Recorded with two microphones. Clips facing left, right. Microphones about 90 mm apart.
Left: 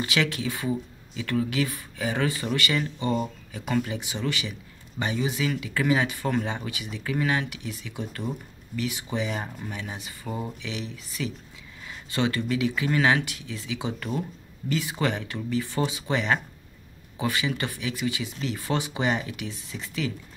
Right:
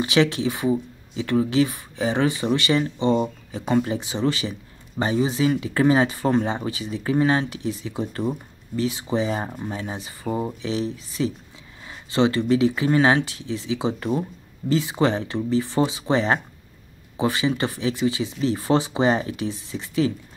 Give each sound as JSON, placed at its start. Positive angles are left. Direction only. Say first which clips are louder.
{"t": 0.0, "sound": "speech", "louder": "right 7 dB", "side_deg": -25}